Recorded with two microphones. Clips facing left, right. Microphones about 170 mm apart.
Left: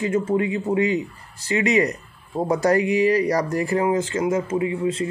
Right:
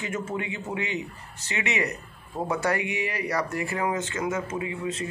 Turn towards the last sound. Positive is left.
turn(degrees=30)  # may be behind; listen again after turning